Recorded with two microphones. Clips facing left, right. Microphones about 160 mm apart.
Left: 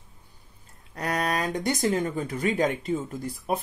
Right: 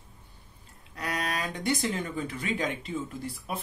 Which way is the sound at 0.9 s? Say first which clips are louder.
Left 5 dB; 45° left (ahead or behind).